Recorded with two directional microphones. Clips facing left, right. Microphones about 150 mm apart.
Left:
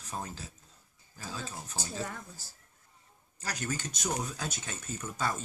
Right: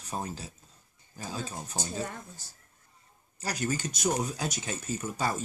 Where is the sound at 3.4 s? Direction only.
10° right (ahead or behind).